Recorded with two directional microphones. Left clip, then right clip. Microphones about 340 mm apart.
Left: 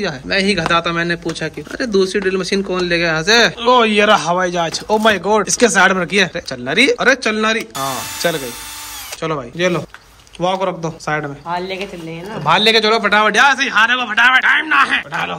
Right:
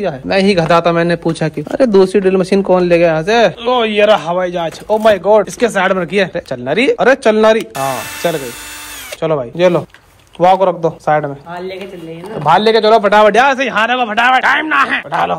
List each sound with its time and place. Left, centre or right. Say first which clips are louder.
0.0 s speech: right 4 dB; centre
11.5 s speech: left 2 dB; left
12.4 s speech: right 3 dB; centre